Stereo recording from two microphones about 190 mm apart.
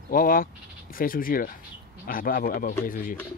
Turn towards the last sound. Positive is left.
turn(degrees=45)  # may be behind; listen again after turning